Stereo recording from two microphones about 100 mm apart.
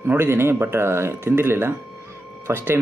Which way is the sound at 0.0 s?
25° right (ahead or behind).